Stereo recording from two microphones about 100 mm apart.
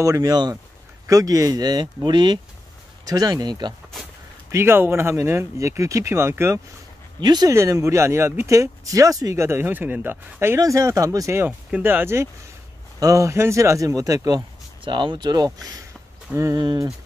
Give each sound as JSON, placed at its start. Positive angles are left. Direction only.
{"t": 0.2, "sound": "speech", "side_deg": -45}
{"t": 4.5, "sound": "speech", "side_deg": -25}
{"t": 7.2, "sound": "speech", "side_deg": -45}
{"t": 7.5, "sound": "speech", "side_deg": -30}
{"t": 10.6, "sound": "speech", "side_deg": -30}
{"t": 11.4, "sound": "speech", "side_deg": -20}
{"t": 14.9, "sound": "speech", "side_deg": -50}